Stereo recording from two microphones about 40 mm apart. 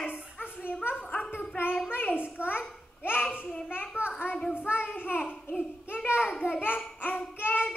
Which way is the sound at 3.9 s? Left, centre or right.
Left.